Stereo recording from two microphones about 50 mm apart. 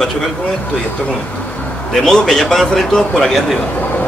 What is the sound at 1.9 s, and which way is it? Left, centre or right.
Speech, centre.